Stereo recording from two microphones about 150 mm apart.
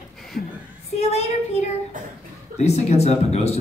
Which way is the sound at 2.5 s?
45° left (ahead or behind).